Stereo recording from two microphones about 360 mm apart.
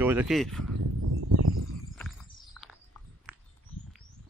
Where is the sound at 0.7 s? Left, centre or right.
Right.